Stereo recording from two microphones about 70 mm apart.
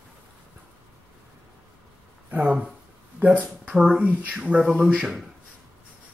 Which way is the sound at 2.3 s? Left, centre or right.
Right.